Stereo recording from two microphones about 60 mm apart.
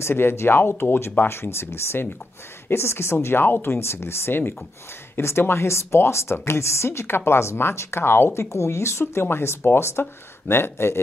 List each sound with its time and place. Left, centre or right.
0.0 s speech: left